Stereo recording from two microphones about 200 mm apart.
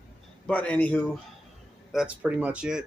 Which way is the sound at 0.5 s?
5° left (ahead or behind).